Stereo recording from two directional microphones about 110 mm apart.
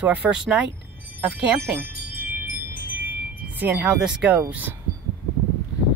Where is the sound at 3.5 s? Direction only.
15° right (ahead or behind).